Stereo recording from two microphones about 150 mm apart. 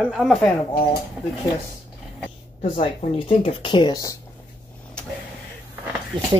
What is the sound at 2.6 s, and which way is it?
Speech, 40° left (ahead or behind).